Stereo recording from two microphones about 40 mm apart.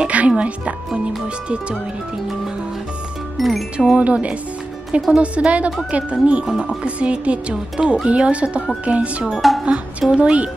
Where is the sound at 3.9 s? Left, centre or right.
Right.